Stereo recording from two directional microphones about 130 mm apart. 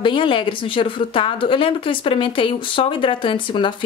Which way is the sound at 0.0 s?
40° left (ahead or behind).